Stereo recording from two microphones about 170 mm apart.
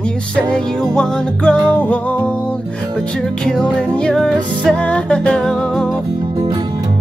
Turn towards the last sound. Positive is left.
turn(degrees=5)  # may be behind; listen again after turning